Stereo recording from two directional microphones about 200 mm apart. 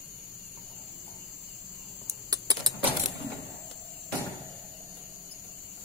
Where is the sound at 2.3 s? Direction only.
20° right (ahead or behind).